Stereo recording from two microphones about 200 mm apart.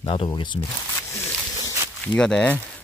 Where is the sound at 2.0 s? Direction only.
5° left (ahead or behind).